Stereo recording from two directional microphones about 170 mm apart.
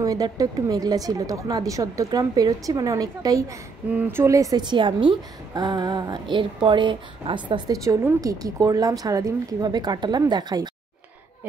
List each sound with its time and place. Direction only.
0.0 s a woman's voice: 20° right (ahead or behind)